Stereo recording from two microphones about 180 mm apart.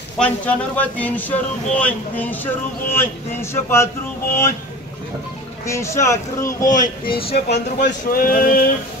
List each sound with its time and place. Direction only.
0.2 s speech: 10° left (ahead or behind)
5.7 s speech: 15° left (ahead or behind)
6.8 s speech: 30° left (ahead or behind)
7.2 s speech: 65° left (ahead or behind)